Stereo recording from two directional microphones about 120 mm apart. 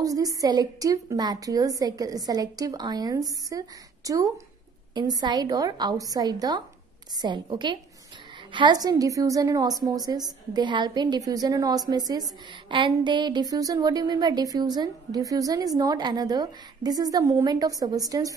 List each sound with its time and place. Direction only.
0.0 s a woman's voice: 30° right (ahead or behind)